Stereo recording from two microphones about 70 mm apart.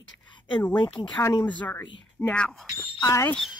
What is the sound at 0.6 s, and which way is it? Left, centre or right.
Speech, left.